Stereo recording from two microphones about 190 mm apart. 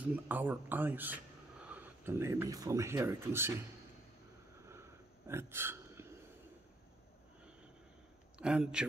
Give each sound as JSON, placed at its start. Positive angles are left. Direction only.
{"t": 0.0, "sound": "speech", "side_deg": -10}
{"t": 5.3, "sound": "a sound", "side_deg": -10}
{"t": 8.4, "sound": "speech", "side_deg": -5}